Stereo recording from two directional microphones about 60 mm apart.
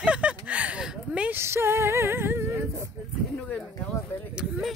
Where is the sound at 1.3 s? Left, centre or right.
Right.